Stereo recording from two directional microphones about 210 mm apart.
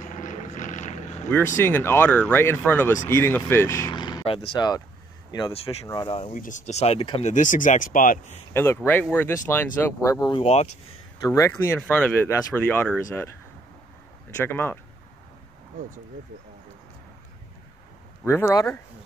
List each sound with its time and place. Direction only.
0.0 s vehicle: 40° left (ahead or behind)
1.6 s speech: 10° left (ahead or behind)
6.3 s speech: 35° left (ahead or behind)
8.5 s speech: 10° left (ahead or behind)
10.4 s speech: 30° left (ahead or behind)
11.2 s speech: 15° left (ahead or behind)
14.4 s speech: 10° left (ahead or behind)
18.2 s speech: 15° left (ahead or behind)